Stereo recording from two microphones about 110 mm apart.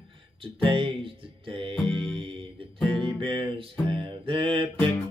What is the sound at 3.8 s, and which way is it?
Mantra, 55° right (ahead or behind).